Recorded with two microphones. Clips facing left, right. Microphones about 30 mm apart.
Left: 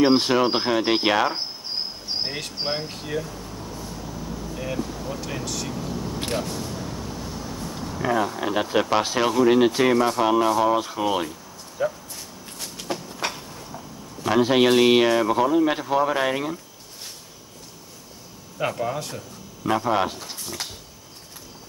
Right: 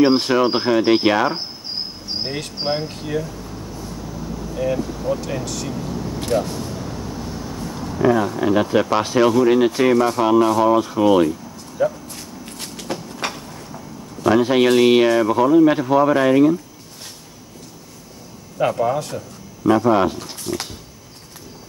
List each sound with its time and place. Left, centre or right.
0.3 s speech: centre
4.6 s speech: centre
6.3 s speech: left
7.6 s speech: centre
12.9 s train: centre
14.4 s speech: centre
18.6 s speech: centre
20.2 s speech: right